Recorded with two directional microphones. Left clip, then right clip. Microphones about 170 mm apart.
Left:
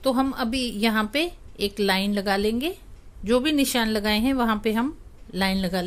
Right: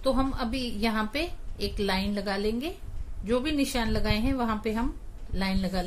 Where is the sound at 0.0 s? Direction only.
45° left (ahead or behind).